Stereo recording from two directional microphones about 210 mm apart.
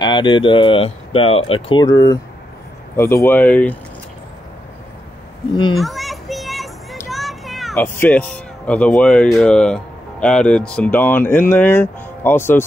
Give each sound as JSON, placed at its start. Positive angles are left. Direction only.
{"t": 0.0, "sound": "speech", "side_deg": 20}
{"t": 5.8, "sound": "children playing", "side_deg": 0}
{"t": 7.7, "sound": "speech", "side_deg": 10}